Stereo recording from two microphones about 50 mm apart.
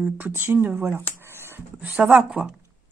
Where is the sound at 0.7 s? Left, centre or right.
Right.